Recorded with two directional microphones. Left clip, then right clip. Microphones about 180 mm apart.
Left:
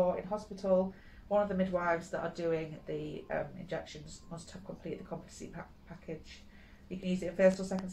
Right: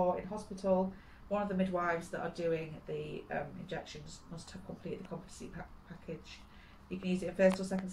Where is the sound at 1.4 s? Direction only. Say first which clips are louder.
Left 2 dB; 15° left (ahead or behind).